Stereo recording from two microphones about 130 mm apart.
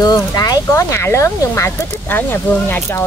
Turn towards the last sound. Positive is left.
turn(degrees=15)  # may be behind; listen again after turning